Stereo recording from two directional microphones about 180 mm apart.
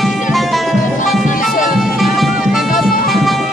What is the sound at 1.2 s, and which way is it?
Music, 50° left (ahead or behind).